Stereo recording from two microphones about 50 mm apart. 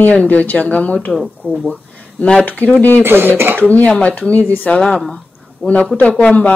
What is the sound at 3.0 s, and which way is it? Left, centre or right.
Speech, right.